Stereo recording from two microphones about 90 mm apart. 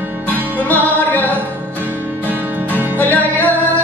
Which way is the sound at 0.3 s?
20° left (ahead or behind).